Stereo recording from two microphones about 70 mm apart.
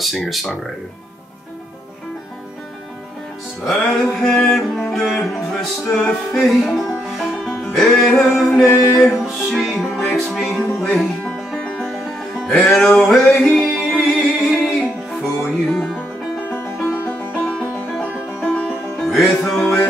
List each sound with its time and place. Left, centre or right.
0.0 s music: centre
3.6 s music: centre
8.6 s music: left
9.1 s music: centre
10.5 s music: centre
11.3 s music: centre
17.0 s music: left
19.1 s music: centre